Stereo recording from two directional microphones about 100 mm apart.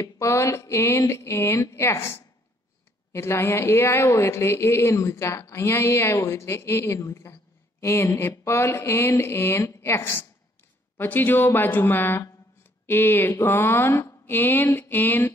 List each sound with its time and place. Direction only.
0.0 s speech: 30° left (ahead or behind)